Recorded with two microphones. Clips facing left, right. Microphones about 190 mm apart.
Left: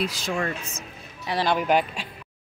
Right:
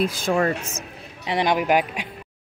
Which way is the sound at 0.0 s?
55° right (ahead or behind).